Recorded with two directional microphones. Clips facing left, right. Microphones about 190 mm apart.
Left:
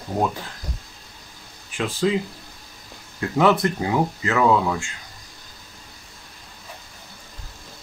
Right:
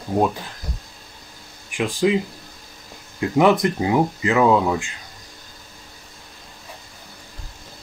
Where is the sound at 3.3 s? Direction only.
15° right (ahead or behind).